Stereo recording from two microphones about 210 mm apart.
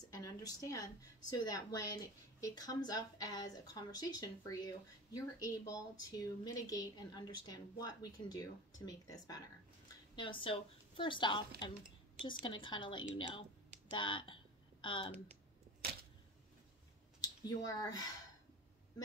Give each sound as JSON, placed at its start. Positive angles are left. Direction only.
{"t": 0.1, "sound": "a woman's voice", "side_deg": 15}
{"t": 13.8, "sound": "a sound", "side_deg": 20}
{"t": 17.2, "sound": "speech", "side_deg": 15}